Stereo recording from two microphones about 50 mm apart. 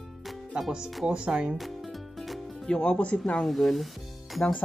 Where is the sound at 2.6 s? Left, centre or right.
Left.